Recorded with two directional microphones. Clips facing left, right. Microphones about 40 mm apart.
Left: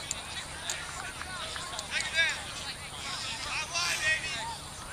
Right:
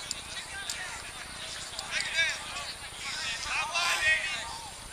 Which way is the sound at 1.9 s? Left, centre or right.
Centre.